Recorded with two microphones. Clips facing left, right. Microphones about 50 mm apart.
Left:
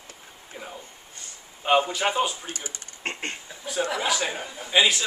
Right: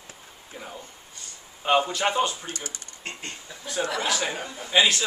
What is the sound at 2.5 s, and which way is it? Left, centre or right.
Speech, left.